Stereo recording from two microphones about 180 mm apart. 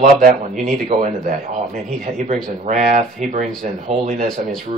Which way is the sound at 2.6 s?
45° right (ahead or behind).